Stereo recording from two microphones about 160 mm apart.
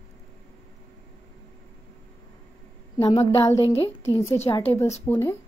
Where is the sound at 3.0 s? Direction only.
20° left (ahead or behind).